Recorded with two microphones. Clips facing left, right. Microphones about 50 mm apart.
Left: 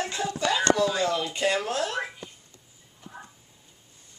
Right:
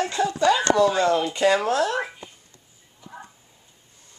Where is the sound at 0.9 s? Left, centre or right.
Right.